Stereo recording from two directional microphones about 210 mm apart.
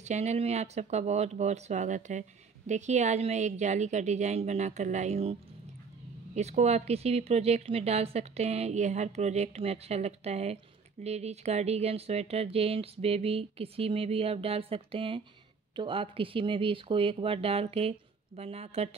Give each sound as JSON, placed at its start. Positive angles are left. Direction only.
{"t": 0.0, "sound": "speech", "side_deg": -30}